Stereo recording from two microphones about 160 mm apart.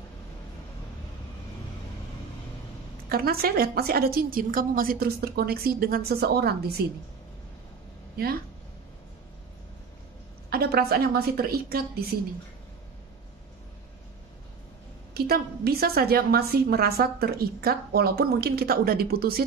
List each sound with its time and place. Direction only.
3.1 s a woman's voice: 70° right (ahead or behind)
10.5 s a woman's voice: 75° right (ahead or behind)
15.1 s a woman's voice: 75° right (ahead or behind)